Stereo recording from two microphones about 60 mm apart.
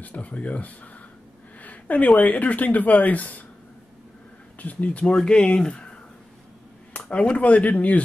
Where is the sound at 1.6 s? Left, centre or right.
Left.